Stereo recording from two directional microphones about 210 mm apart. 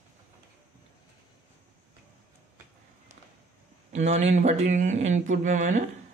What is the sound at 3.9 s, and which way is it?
Speech, 35° right (ahead or behind).